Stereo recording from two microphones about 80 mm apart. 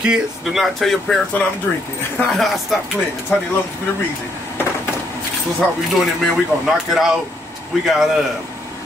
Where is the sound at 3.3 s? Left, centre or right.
Left.